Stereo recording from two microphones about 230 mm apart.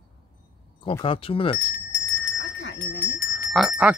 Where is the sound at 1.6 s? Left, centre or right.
Left.